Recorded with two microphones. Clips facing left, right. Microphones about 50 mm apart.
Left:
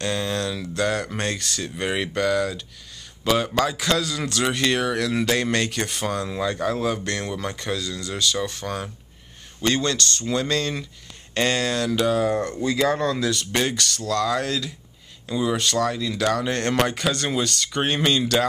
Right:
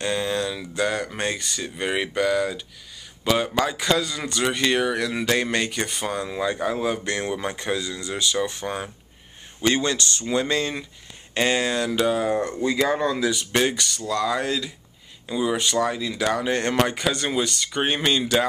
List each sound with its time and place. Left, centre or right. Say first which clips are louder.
0.0 s speech: right 1 dB; centre